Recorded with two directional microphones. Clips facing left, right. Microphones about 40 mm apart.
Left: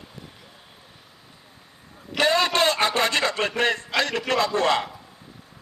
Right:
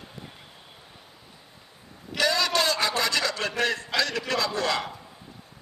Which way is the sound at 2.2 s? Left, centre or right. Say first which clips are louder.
Left 4 dB; left.